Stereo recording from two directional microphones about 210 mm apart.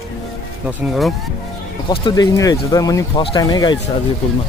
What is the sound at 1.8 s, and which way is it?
Speech, 20° left (ahead or behind).